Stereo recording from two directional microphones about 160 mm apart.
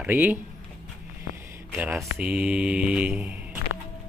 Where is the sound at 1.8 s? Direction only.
10° right (ahead or behind).